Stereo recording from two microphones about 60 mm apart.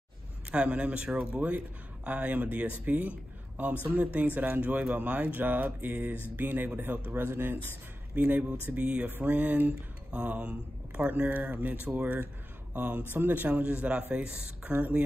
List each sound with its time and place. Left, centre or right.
0.5 s a man's voice: centre; by 7.6 s right
8.1 s speech: right